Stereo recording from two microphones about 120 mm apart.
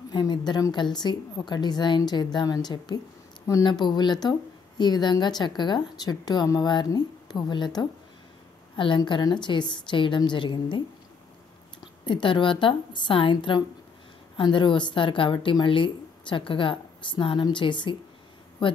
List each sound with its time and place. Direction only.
0.1 s speech: 35° left (ahead or behind)
12.1 s speech: 45° left (ahead or behind)